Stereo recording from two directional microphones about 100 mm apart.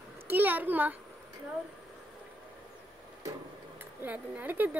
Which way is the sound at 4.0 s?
20° right (ahead or behind).